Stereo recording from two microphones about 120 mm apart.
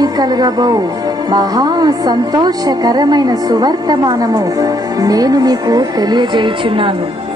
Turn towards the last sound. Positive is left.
turn(degrees=-45)  # may be behind; listen again after turning